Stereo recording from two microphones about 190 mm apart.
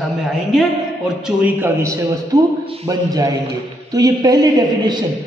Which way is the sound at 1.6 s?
15° right (ahead or behind).